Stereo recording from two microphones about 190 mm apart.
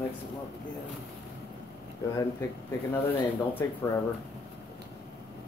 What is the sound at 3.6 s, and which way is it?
Speech, 20° left (ahead or behind).